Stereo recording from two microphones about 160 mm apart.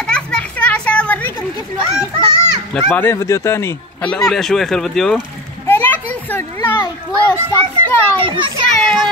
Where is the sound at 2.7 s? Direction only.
10° left (ahead or behind).